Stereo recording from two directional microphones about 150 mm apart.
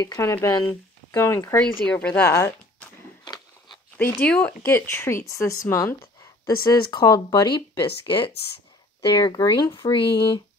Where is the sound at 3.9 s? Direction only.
10° left (ahead or behind).